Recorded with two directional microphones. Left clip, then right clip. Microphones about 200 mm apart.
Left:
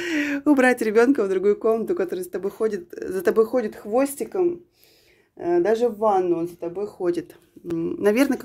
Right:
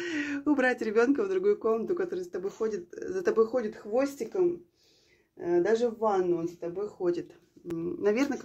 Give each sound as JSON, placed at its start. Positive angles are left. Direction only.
{"t": 0.0, "sound": "speech", "side_deg": 45}
{"t": 5.4, "sound": "speech", "side_deg": 50}